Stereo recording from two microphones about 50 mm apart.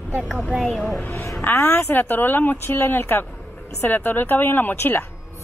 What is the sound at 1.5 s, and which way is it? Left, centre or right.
A woman's voice, left.